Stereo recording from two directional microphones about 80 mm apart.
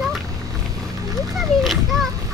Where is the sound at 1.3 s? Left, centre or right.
Centre.